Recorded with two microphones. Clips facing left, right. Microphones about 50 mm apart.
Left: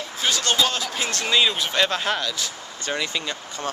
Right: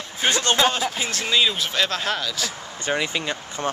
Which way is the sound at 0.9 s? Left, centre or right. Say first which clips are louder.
Even; centre.